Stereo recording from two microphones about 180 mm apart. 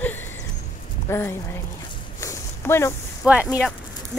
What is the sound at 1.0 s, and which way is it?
Speech, 15° left (ahead or behind).